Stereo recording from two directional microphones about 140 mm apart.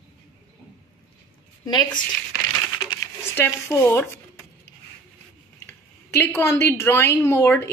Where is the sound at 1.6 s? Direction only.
30° left (ahead or behind).